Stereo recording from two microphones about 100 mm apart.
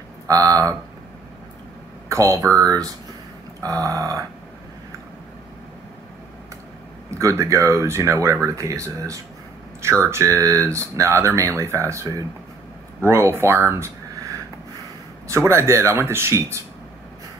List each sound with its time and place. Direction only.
0.3 s speech: 35° right (ahead or behind)
2.0 s speech: 30° right (ahead or behind)
7.1 s speech: 30° right (ahead or behind)